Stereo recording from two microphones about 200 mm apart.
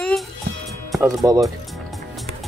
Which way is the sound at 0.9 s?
15° right (ahead or behind).